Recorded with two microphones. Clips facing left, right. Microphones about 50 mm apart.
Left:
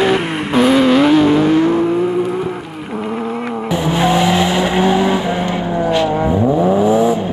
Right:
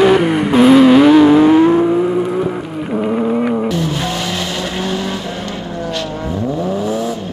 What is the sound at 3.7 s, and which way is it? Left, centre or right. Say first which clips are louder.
Vehicle: left 5 dB; centre.